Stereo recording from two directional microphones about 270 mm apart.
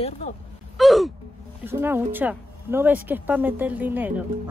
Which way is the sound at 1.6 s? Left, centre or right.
Centre.